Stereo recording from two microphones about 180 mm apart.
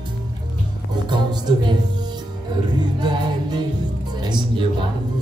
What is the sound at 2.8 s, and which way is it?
Music, 25° right (ahead or behind).